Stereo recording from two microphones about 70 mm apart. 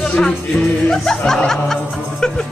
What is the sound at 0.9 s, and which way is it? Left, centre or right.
Speech, centre.